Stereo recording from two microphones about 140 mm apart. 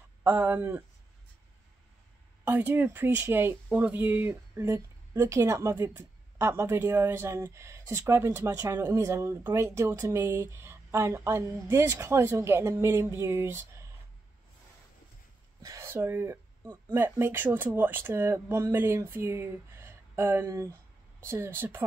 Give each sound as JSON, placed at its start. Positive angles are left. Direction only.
{"t": 0.2, "sound": "speech", "side_deg": -10}
{"t": 2.4, "sound": "speech", "side_deg": -15}
{"t": 15.6, "sound": "speech", "side_deg": -20}